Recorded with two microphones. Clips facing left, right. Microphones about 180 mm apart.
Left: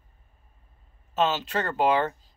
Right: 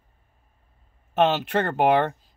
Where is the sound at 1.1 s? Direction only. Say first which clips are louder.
Right 5 dB; 60° right (ahead or behind).